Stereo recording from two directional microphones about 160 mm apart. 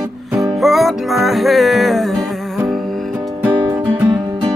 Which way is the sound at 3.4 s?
10° right (ahead or behind).